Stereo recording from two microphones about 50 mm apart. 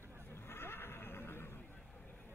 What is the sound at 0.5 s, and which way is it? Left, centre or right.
Neigh, left.